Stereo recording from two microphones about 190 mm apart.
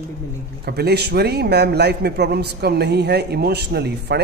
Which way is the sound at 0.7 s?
55° right (ahead or behind).